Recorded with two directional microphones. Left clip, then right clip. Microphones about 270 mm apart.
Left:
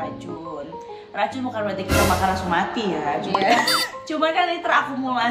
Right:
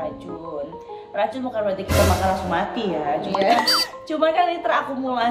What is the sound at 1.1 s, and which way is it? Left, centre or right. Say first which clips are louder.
Speech: right 1 dB; centre.